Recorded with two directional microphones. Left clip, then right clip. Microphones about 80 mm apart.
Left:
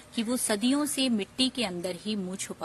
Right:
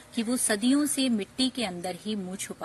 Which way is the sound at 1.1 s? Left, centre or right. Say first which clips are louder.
Left 1 dB; left.